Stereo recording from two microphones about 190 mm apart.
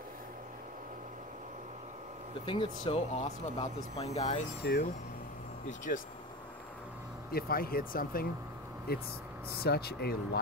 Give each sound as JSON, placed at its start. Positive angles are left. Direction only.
{"t": 2.4, "sound": "speech", "side_deg": 25}
{"t": 5.9, "sound": "speech", "side_deg": 50}
{"t": 7.2, "sound": "speech", "side_deg": 50}